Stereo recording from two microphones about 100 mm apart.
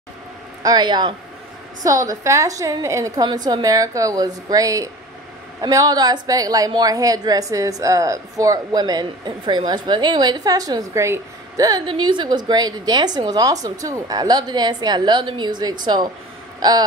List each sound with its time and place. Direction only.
0.6 s a woman's voice: 45° right (ahead or behind)
1.8 s a woman's voice: 35° right (ahead or behind)
3.3 s a woman's voice: 45° right (ahead or behind)
11.8 s a woman's voice: 55° right (ahead or behind)